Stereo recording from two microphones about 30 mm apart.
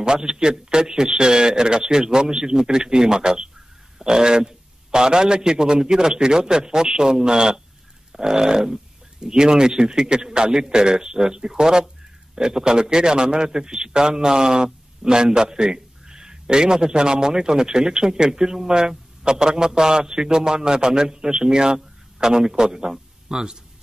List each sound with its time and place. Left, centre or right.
0.0 s a man's voice: right